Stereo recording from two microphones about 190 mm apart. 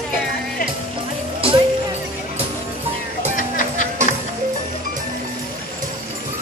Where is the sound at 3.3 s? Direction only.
45° left (ahead or behind).